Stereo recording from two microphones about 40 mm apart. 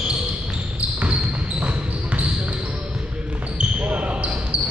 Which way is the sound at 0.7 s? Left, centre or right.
Right.